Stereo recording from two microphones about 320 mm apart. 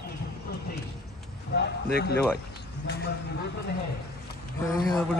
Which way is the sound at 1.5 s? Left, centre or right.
Left.